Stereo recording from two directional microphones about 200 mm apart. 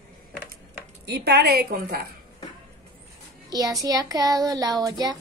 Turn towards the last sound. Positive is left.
turn(degrees=-20)  # may be behind; listen again after turning